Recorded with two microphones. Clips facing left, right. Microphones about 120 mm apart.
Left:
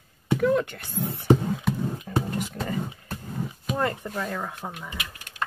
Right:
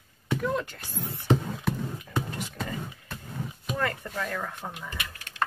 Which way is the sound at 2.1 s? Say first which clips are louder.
Left 4 dB; 40° left (ahead or behind).